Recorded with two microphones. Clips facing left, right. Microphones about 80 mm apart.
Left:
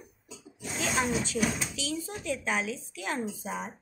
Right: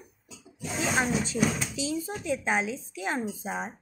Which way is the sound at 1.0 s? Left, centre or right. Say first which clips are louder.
Right 2 dB; right.